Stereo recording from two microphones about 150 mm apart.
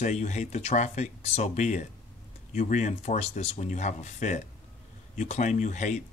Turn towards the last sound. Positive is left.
turn(degrees=50)  # may be behind; listen again after turning